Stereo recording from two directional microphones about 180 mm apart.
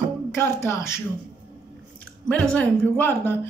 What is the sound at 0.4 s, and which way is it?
Speech, 15° left (ahead or behind).